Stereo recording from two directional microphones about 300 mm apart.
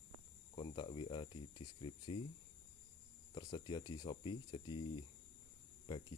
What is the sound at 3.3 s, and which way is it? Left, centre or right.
Speech, centre.